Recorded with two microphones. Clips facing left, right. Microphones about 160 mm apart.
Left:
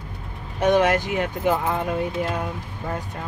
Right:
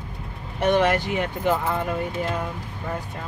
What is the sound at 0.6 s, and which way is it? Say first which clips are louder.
Speech: left 1 dB; 15° left (ahead or behind).